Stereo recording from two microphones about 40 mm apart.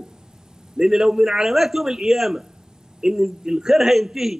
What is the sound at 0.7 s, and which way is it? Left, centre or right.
A man's voice, centre.